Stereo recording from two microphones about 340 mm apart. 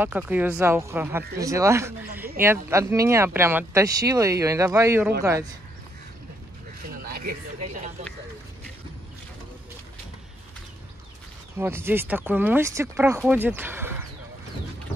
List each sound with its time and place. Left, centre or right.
0.0 s speech: centre
7.1 s a sound: right
11.5 s speech: centre